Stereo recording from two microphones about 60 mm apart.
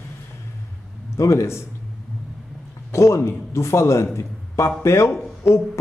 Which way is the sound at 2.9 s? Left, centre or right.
Left.